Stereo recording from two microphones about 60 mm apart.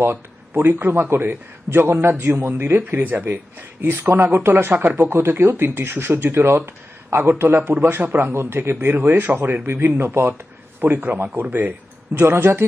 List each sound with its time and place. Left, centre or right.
0.0 s speech: right
10.8 s speech: right